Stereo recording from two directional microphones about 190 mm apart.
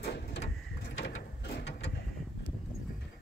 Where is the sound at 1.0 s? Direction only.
75° left (ahead or behind).